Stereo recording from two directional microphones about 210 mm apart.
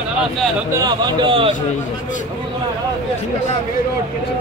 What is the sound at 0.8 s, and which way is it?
Speech, 20° right (ahead or behind).